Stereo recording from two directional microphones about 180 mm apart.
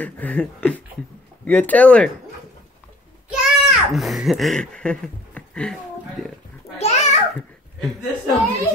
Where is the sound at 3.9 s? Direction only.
Centre (ahead or behind).